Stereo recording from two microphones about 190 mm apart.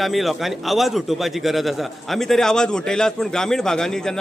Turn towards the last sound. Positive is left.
turn(degrees=5)  # may be behind; listen again after turning